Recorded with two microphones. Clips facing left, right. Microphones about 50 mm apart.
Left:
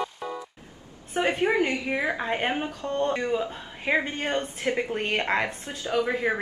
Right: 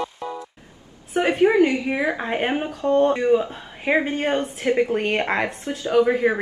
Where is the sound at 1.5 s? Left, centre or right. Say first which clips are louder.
Right 6 dB; centre.